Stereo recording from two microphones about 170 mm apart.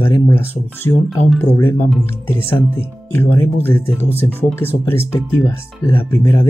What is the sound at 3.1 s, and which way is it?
Speech, 10° left (ahead or behind).